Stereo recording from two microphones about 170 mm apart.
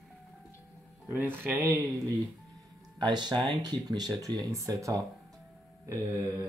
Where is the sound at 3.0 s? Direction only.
25° right (ahead or behind).